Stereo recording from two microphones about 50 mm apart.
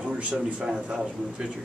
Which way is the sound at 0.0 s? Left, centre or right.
Right.